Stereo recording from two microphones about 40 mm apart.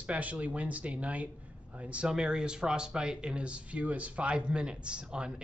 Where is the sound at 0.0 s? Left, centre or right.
Right.